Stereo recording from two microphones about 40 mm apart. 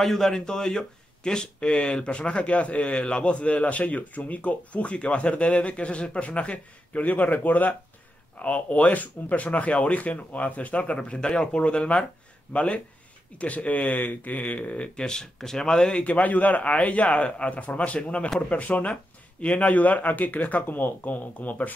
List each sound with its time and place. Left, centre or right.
0.0 s speech: centre; by 7.7 s left
8.4 s speech: left
12.5 s speech: left; by 16.0 s centre
16.0 s speech: left